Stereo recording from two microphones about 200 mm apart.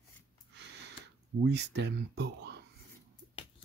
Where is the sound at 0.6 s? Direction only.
60° right (ahead or behind).